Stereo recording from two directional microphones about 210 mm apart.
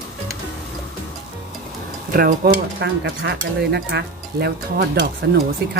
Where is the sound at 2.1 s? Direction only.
45° right (ahead or behind).